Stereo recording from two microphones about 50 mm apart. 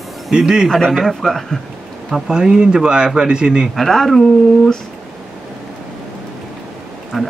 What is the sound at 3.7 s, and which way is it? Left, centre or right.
Speech, centre.